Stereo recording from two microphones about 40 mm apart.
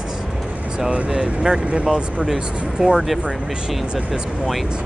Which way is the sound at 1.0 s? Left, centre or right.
Right.